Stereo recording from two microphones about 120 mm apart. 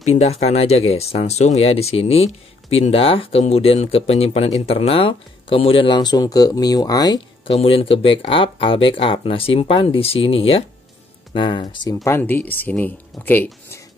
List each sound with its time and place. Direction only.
0.0 s speech: 65° left (ahead or behind); by 7.2 s 35° left (ahead or behind)
7.4 s speech: 50° left (ahead or behind)
11.9 s speech: 25° left (ahead or behind)